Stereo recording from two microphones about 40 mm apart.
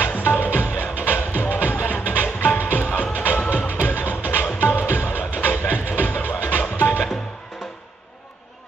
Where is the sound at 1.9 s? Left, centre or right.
Left.